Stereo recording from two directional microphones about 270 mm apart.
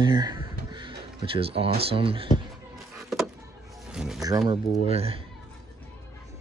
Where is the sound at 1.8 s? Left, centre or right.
Centre.